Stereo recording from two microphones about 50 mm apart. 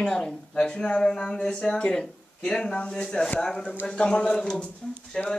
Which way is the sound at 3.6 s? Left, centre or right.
Left.